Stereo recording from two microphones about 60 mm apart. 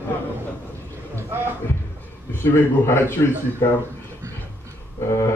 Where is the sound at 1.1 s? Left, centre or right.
Right.